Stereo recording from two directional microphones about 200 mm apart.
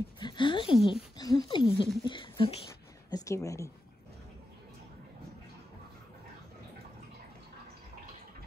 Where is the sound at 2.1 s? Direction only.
25° left (ahead or behind).